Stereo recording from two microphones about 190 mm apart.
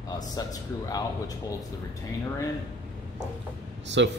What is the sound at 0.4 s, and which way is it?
Speech, 20° left (ahead or behind).